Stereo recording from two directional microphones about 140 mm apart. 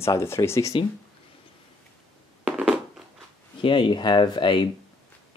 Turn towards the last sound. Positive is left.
turn(degrees=35)  # may be behind; listen again after turning